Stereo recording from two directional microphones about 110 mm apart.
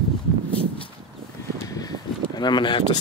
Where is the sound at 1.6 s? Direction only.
35° left (ahead or behind).